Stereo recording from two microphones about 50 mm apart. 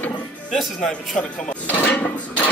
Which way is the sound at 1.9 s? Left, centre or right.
Left.